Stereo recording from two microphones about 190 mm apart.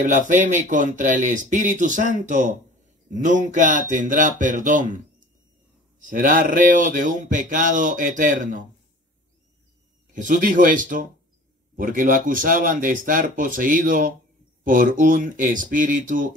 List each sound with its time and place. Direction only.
0.0 s speech: 40° right (ahead or behind)
10.1 s speech: 45° right (ahead or behind)